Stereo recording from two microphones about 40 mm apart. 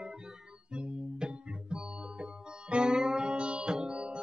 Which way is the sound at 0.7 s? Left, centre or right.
Right.